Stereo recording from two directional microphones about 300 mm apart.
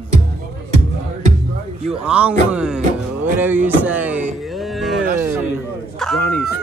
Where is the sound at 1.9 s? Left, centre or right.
Centre.